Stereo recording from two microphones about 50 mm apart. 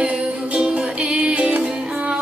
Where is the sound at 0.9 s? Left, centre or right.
Right.